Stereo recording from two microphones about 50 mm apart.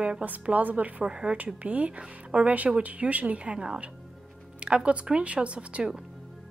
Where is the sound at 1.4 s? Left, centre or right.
Right.